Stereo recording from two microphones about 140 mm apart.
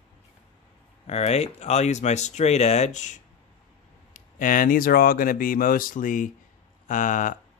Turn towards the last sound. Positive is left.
turn(degrees=70)  # may be behind; listen again after turning